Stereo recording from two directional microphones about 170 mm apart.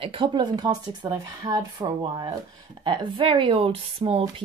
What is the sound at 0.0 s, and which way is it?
A woman's voice, 30° right (ahead or behind).